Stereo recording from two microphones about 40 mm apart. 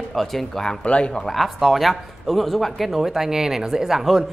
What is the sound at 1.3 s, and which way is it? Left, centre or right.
Speech, centre.